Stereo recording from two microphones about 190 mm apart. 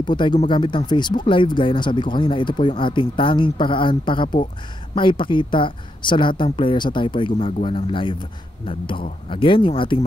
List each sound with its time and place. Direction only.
0.0 s speech: 25° left (ahead or behind)